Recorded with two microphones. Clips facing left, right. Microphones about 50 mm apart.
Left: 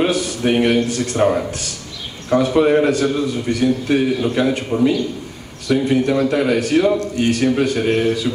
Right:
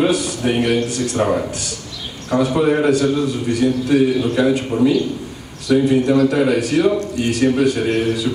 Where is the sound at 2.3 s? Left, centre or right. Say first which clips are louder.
Left 2 dB; left.